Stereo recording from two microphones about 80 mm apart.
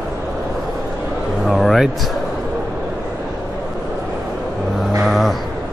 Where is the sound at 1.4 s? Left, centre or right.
Centre.